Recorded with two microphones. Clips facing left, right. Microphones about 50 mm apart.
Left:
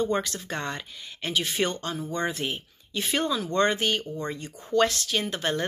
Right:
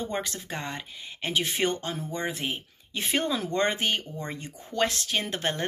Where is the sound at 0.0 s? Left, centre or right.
Centre.